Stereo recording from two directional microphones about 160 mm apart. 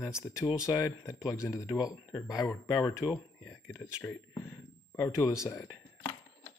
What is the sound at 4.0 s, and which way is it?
Speech, 10° left (ahead or behind).